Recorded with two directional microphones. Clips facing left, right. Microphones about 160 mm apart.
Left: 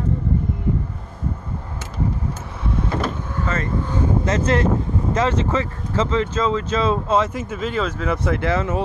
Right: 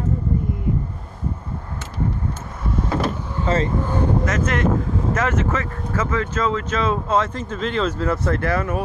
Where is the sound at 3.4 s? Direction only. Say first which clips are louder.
Right 5 dB; 25° right (ahead or behind).